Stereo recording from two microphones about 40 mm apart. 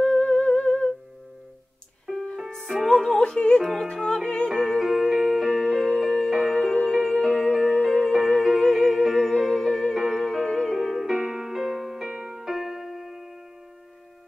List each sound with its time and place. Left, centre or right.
0.0 s humming: centre
2.1 s music: centre
3.2 s speech: left
3.8 s music: centre
4.5 s music: centre; by 7.1 s left
7.1 s music: centre
11.1 s music: centre